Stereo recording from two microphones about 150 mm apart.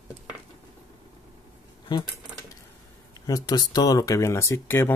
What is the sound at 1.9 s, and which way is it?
Speech, 30° left (ahead or behind).